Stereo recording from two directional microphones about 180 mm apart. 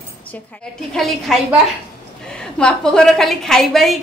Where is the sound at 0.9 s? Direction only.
Centre (ahead or behind).